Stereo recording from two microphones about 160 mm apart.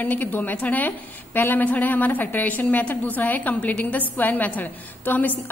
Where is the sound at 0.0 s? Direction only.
10° left (ahead or behind).